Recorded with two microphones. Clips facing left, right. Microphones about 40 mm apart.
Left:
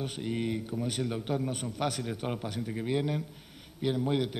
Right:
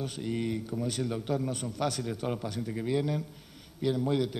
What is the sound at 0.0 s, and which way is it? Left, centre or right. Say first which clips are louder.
A man's voice: even; left.